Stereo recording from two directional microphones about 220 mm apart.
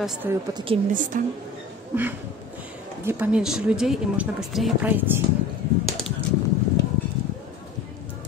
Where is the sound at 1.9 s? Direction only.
10° right (ahead or behind).